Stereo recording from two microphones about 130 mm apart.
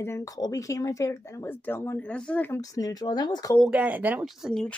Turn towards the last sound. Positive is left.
turn(degrees=0)  # may be behind; listen again after turning